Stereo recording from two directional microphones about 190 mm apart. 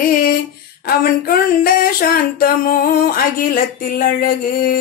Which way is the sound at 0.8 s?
50° left (ahead or behind).